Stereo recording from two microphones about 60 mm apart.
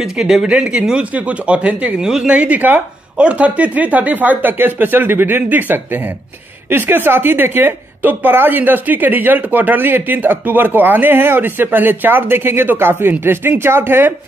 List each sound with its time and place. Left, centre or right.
0.0 s speech: centre
2.0 s speech: centre
2.3 s a woman's voice: right